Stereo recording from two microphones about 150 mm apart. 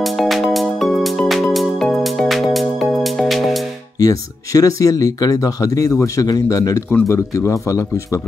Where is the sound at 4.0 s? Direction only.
25° left (ahead or behind).